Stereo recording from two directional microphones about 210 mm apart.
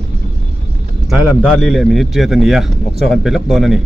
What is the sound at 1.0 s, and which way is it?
A man's voice, centre (ahead or behind).